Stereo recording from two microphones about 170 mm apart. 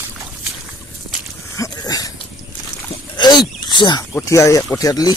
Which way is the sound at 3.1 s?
25° left (ahead or behind).